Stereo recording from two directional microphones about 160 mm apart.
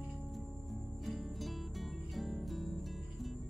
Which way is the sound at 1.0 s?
Centre (ahead or behind).